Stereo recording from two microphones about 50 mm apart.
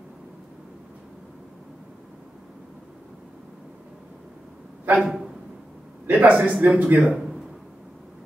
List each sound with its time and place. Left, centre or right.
4.9 s a man's voice: centre
6.0 s a man's voice: right
7.2 s a sound: centre